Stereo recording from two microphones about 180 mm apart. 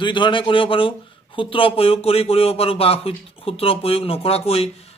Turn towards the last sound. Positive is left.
turn(degrees=35)  # may be behind; listen again after turning